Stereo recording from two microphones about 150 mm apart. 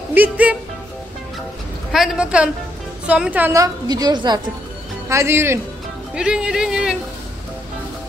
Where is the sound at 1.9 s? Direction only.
5° right (ahead or behind).